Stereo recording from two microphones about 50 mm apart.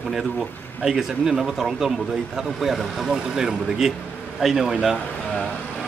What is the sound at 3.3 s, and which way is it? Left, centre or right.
A man's voice, centre.